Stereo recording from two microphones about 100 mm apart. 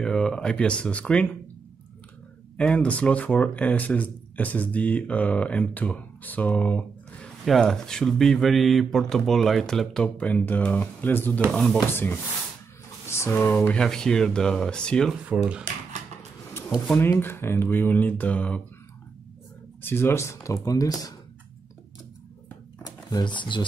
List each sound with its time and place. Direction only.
0.0 s speech: 5° left (ahead or behind)
2.5 s speech: 10° left (ahead or behind)
7.4 s speech: 5° left (ahead or behind); by 11.4 s 20° left (ahead or behind)
11.5 s speech: 5° left (ahead or behind)
11.9 s speech: 20° left (ahead or behind)
13.7 s speech: 5° left (ahead or behind)
15.2 s speech: 10° right (ahead or behind)
16.9 s speech: 25° left (ahead or behind)
19.8 s speech: 20° left (ahead or behind)
22.8 s speech: 45° left (ahead or behind)